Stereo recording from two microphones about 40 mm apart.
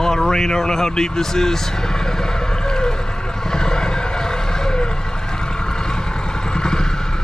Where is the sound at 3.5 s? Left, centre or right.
Centre.